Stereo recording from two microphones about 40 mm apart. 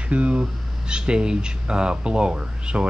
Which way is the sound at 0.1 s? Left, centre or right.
Right.